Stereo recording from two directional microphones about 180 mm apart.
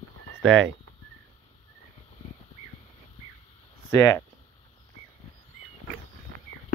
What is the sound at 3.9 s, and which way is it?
Speech, 15° left (ahead or behind).